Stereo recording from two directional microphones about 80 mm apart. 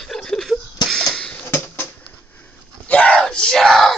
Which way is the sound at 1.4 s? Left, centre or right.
Left.